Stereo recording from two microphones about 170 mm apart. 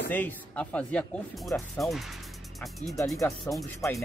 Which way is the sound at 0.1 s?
10° left (ahead or behind).